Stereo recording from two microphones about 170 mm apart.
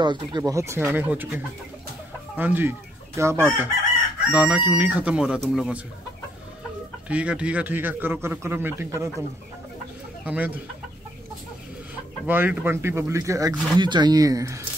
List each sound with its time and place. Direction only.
0.0 s a man's voice: 25° right (ahead or behind); by 5.8 s 5° right (ahead or behind)
7.1 s a man's voice: 5° right (ahead or behind)
10.2 s a man's voice: 10° right (ahead or behind)
12.3 s speech: 10° right (ahead or behind)